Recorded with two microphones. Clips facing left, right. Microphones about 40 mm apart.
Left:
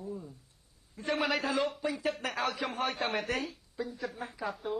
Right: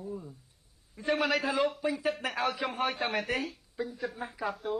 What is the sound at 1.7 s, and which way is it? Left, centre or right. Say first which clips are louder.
Speech: right 2 dB; centre.